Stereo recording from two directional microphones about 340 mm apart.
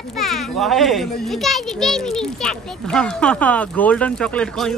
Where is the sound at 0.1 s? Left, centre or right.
Centre.